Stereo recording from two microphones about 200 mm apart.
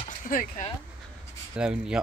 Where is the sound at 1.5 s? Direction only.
5° right (ahead or behind).